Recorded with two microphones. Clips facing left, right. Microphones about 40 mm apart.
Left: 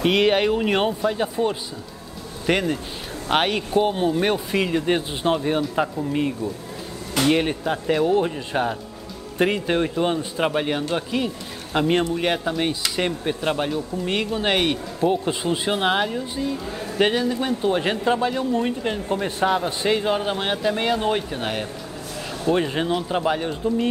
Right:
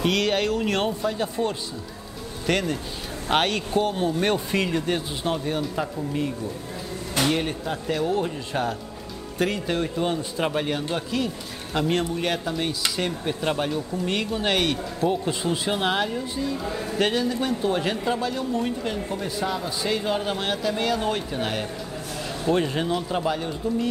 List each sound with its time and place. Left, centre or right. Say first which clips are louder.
0.0 s a man's voice: left 4 dB; left
4.2 s speech: left 2 dB; centre
4.8 s a man's voice: left 4 dB; left
18.0 s a man's voice: left 4 dB; left
19.0 s a man's voice: left 6 dB; left
20.0 s a man's voice: left 3 dB; centre